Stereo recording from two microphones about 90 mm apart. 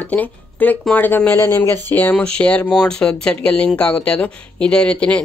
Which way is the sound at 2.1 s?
10° left (ahead or behind).